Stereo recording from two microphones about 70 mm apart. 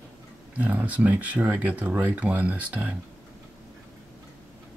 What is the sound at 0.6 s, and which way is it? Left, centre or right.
Speech, right.